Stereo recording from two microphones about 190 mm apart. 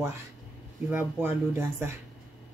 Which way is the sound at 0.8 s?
10° right (ahead or behind).